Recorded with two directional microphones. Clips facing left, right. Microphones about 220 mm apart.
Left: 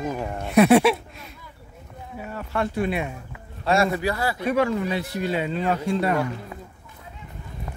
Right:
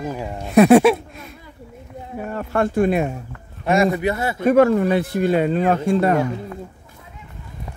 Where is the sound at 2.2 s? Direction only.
50° right (ahead or behind).